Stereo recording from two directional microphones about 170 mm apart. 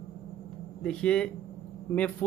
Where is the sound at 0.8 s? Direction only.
5° left (ahead or behind).